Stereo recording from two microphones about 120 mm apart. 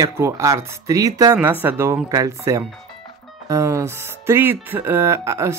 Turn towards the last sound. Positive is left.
turn(degrees=-25)  # may be behind; listen again after turning